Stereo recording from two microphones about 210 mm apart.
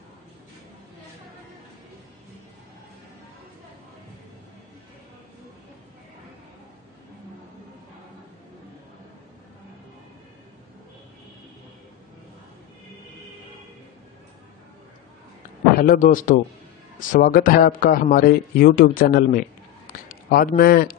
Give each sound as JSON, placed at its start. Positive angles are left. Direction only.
{"t": 15.8, "sound": "a man's voice", "side_deg": 40}